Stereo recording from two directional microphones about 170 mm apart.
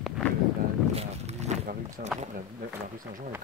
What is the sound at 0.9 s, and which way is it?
Walk, 40° right (ahead or behind).